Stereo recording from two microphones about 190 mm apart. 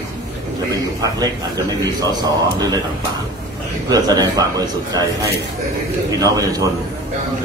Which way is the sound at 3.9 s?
20° right (ahead or behind).